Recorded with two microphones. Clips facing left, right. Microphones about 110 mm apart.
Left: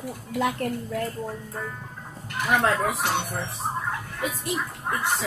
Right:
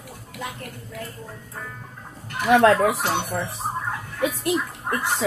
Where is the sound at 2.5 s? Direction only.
90° right.